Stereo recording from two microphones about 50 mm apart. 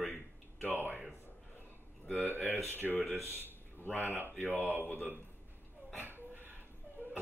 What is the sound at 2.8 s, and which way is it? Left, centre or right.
Speech, right.